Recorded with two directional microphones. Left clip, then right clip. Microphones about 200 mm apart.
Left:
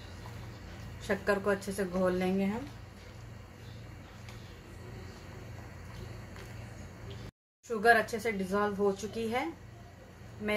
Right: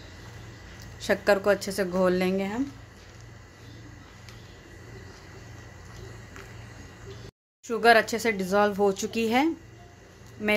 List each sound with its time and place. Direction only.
1.0 s a woman's voice: 55° right (ahead or behind)
7.6 s speech: 50° right (ahead or behind)